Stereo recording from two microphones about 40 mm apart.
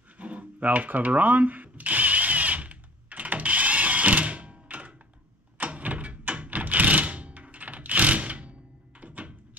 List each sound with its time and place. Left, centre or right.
0.2 s rub: right
5.6 s a sound: right
9.0 s door: right